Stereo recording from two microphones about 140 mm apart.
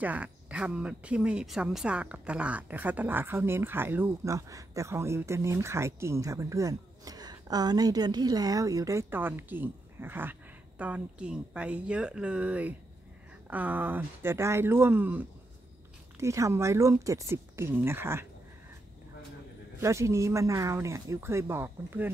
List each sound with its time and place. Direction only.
0.0 s speech: 10° right (ahead or behind)
19.8 s speech: 20° right (ahead or behind)